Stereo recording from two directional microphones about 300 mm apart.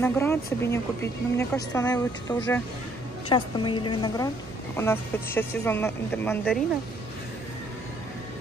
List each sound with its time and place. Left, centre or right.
0.0 s speech: centre